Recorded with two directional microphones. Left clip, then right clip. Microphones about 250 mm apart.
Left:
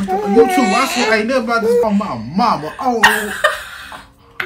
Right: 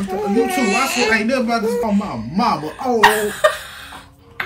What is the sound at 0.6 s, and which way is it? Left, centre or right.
Speech, left.